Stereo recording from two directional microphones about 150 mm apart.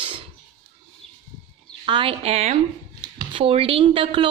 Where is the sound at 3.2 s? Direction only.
35° right (ahead or behind).